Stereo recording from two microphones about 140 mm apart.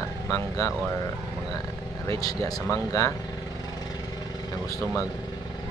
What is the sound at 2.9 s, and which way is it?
Speech, 25° left (ahead or behind).